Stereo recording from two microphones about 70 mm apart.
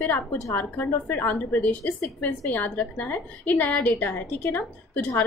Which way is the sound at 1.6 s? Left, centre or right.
Left.